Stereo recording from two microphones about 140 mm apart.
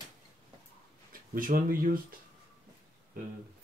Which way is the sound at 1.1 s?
85° right.